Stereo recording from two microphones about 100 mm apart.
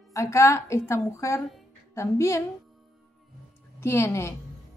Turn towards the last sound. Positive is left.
turn(degrees=30)  # may be behind; listen again after turning